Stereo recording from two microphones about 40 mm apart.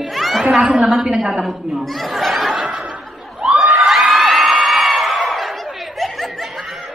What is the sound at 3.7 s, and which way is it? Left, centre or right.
Crowd, centre.